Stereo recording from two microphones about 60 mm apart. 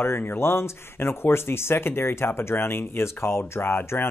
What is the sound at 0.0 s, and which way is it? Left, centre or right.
Speech, left.